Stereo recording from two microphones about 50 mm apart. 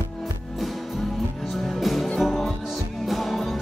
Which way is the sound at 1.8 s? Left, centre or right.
Centre.